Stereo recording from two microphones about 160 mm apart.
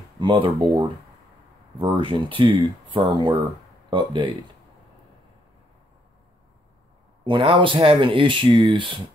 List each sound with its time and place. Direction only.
0.2 s speech: 30° right (ahead or behind)
7.2 s speech: 30° right (ahead or behind)